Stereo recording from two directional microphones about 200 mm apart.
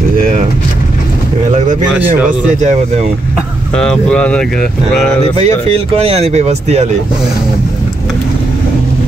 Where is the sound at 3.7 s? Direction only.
5° left (ahead or behind).